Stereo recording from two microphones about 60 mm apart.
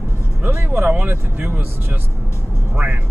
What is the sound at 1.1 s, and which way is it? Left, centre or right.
Speech, right.